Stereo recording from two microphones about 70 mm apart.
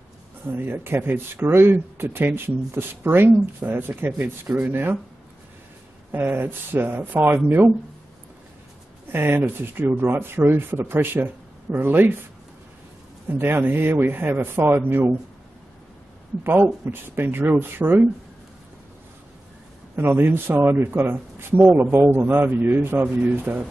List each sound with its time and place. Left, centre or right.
0.5 s speech: right
6.1 s speech: right
9.1 s speech: right
13.4 s speech: right
16.4 s speech: right
20.0 s speech: right